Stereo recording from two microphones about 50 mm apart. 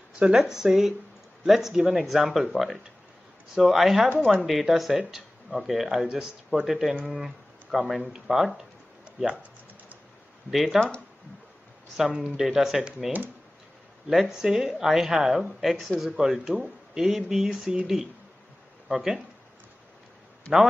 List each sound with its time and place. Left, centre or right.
0.2 s speech: centre
4.2 s speech: centre
4.5 s speech: centre
7.1 s a sound: centre
7.9 s speech: centre
10.5 s speech: centre
12.4 s speech: centre
18.9 s speech: centre